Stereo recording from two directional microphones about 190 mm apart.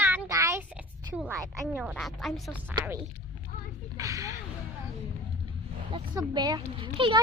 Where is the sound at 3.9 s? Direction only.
15° right (ahead or behind).